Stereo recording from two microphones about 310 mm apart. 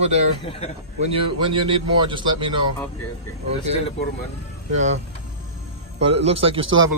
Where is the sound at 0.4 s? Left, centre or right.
Centre.